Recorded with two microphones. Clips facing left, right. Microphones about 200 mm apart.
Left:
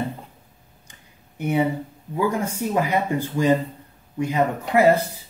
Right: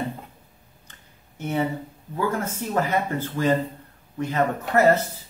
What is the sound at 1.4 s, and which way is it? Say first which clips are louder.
Speech: left 4 dB; 15° left (ahead or behind).